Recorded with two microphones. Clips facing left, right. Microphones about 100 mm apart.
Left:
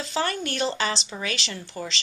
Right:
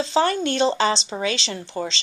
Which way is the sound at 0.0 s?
25° right (ahead or behind).